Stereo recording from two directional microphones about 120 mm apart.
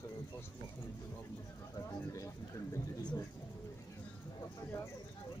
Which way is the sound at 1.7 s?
25° left (ahead or behind).